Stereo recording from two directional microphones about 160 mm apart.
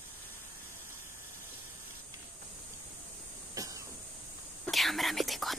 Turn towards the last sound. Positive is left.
turn(degrees=0)  # may be behind; listen again after turning